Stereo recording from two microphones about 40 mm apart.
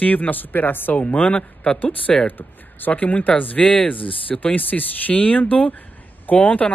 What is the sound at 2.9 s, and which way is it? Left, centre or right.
Speech, left.